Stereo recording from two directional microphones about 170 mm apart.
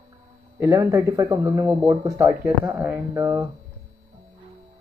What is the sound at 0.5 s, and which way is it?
Speech, 15° right (ahead or behind).